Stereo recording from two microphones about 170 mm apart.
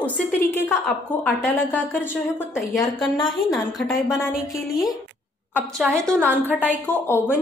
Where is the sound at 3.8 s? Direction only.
Centre (ahead or behind).